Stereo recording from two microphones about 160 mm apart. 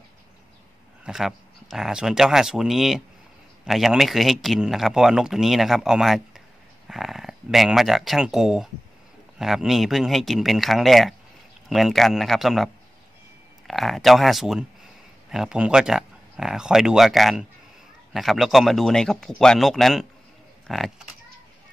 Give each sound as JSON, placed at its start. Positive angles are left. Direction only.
{"t": 1.0, "sound": "speech", "side_deg": -5}